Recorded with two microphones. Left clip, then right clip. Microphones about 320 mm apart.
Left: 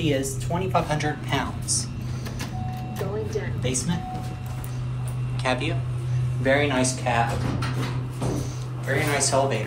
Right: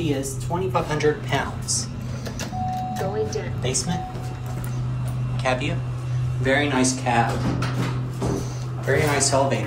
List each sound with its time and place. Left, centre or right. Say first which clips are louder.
0.0 s speech: left 1 dB; centre
5.4 s speech: right 2 dB; centre
6.4 s speech: even; centre
6.8 s speech: right 2 dB; centre
8.8 s speech: right 3 dB; centre